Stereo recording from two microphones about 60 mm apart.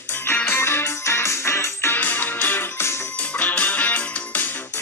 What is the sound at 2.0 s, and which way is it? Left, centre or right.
Music, left.